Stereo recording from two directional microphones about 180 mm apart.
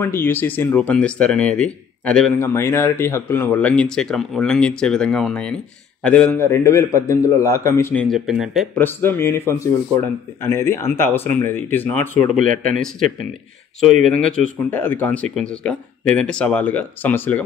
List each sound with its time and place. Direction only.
0.0 s a man's voice: 10° left (ahead or behind)
8.7 s a man's voice: 10° left (ahead or behind)
12.4 s a man's voice: 45° right (ahead or behind)
14.0 s a man's voice: 5° left (ahead or behind)